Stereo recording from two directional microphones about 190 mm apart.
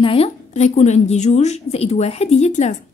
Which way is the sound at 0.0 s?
30° left (ahead or behind).